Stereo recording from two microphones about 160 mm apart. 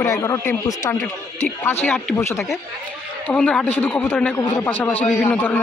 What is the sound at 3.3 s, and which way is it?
Speech, 5° left (ahead or behind).